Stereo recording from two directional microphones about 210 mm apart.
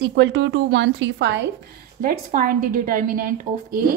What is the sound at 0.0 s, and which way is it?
A woman's voice, 50° right (ahead or behind).